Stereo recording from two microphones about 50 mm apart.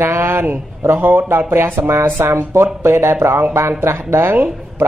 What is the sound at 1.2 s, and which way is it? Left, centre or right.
A man's voice, right.